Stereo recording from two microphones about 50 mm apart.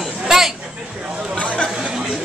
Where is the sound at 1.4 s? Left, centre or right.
Left.